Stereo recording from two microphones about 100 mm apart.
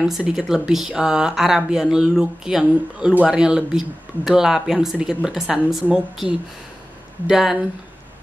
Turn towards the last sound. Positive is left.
turn(degrees=-5)  # may be behind; listen again after turning